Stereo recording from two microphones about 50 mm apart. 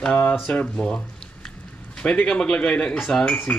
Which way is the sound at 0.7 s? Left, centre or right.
Centre.